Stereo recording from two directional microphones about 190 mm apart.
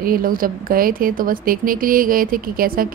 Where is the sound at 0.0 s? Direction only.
50° right (ahead or behind).